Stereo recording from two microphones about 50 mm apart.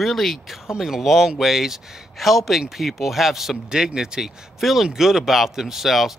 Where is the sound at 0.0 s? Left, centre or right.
Centre.